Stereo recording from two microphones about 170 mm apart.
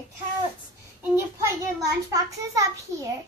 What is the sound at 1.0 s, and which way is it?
A woman's voice, 15° right (ahead or behind).